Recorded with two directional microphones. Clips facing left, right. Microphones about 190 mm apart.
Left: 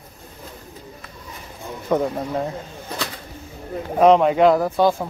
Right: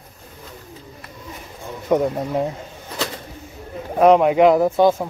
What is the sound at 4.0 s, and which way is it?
Speech, 5° right (ahead or behind).